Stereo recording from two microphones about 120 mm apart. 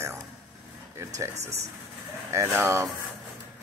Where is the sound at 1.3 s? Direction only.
65° right (ahead or behind).